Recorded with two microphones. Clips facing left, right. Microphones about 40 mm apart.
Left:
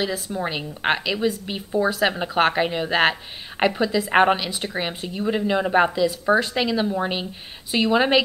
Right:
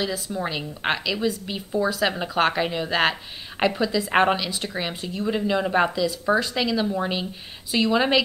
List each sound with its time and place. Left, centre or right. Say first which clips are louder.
0.0 s speech: left 2 dB; centre